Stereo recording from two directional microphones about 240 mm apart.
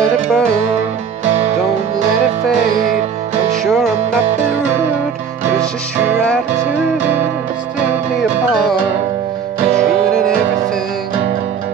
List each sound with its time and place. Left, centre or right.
0.0 s music: centre
1.2 s music: right
3.6 s music: centre
6.6 s music: centre